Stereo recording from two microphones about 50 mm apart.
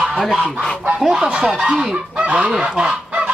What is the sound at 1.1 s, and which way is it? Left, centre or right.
Speech, centre.